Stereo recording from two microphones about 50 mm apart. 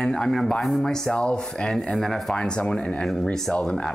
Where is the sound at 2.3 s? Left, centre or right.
Centre.